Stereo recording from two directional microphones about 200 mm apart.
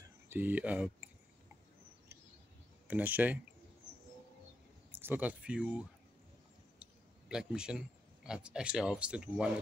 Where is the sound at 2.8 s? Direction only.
10° right (ahead or behind).